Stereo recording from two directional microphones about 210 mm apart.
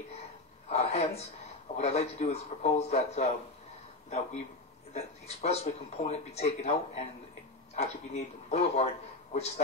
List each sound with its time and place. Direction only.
0.7 s a woman's voice: 30° left (ahead or behind)
4.9 s speech: 30° left (ahead or behind)